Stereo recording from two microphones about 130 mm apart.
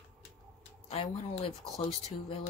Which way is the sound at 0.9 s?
50° left (ahead or behind).